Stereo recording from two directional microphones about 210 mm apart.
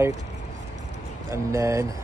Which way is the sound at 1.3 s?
15° right (ahead or behind).